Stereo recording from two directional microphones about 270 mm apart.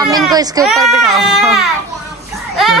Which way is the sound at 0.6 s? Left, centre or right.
Centre.